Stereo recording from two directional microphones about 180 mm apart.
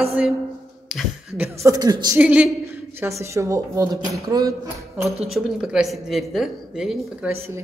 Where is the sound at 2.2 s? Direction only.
10° right (ahead or behind).